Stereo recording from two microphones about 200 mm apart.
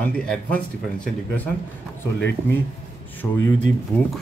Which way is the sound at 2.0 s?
10° left (ahead or behind).